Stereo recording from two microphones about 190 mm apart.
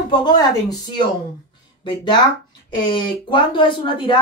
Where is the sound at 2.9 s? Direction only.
25° left (ahead or behind).